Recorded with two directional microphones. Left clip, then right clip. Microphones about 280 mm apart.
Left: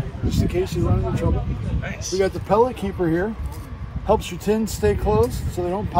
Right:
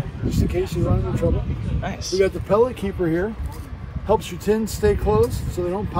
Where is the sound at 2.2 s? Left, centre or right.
Centre.